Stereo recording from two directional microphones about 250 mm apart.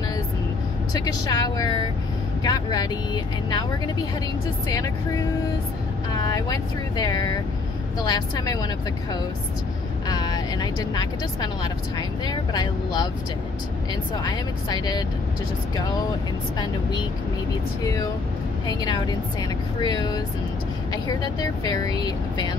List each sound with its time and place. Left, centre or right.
0.9 s speech: centre
6.2 s speech: centre
10.0 s speech: centre
14.2 s speech: centre
18.7 s speech: centre